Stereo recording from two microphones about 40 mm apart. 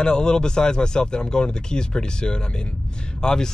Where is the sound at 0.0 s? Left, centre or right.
Left.